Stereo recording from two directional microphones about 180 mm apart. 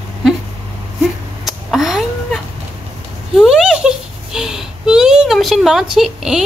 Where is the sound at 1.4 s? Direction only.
Centre (ahead or behind).